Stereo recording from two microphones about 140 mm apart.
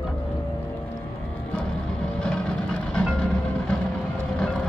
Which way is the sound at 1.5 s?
5° left (ahead or behind).